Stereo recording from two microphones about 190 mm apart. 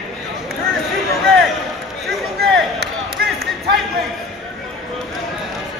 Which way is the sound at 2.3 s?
60° right (ahead or behind).